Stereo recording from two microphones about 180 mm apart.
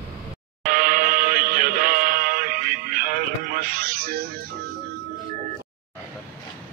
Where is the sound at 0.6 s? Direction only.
50° right (ahead or behind).